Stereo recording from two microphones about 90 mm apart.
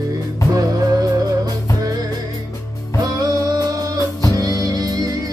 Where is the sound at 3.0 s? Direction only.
45° right (ahead or behind).